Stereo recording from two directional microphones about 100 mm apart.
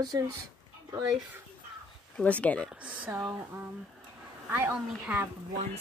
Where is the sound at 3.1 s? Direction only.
25° right (ahead or behind).